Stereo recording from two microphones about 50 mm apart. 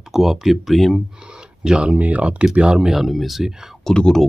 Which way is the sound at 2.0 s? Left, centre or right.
Right.